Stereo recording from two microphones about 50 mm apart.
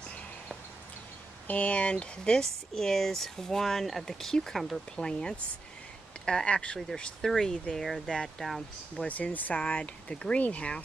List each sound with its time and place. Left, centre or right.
1.5 s speech: left
2.7 s speech: centre
4.9 s speech: centre
7.0 s speech: centre
9.0 s speech: left